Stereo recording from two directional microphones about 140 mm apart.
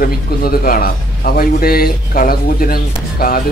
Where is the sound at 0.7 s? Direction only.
90° left.